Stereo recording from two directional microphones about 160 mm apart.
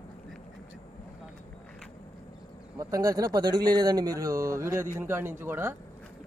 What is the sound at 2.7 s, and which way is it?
Speech, 20° right (ahead or behind).